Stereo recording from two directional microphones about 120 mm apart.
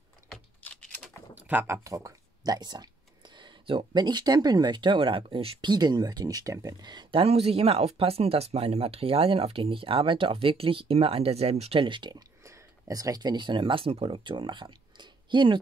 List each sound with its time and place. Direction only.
0.3 s a sound: 10° left (ahead or behind)
1.3 s speech: 15° right (ahead or behind); by 5.7 s 50° right (ahead or behind)
5.7 s speech: 35° right (ahead or behind)
12.4 s speech: 30° right (ahead or behind)